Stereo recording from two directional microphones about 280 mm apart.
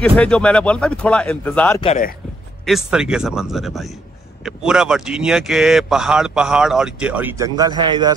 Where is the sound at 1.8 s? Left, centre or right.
Left.